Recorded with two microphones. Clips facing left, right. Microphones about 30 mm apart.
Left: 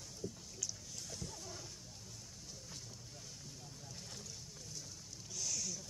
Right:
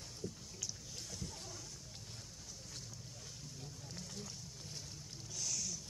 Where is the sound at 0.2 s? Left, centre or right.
Centre.